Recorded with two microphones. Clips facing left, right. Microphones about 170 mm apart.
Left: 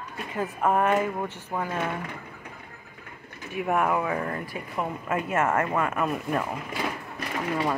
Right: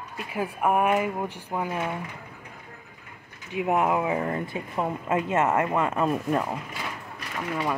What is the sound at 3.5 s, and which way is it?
Speech, 20° right (ahead or behind).